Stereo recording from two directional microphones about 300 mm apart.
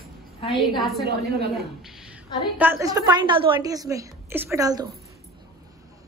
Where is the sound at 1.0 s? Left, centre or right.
Right.